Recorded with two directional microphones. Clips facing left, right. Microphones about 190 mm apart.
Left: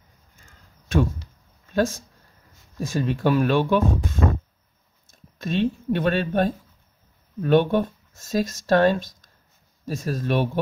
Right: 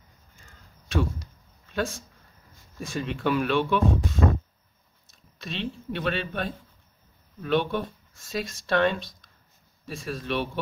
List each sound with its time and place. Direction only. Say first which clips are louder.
1.7 s speech: left 7 dB; 40° left (ahead or behind)